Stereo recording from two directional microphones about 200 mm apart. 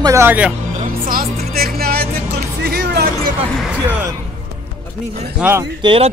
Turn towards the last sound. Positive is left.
turn(degrees=-25)  # may be behind; listen again after turning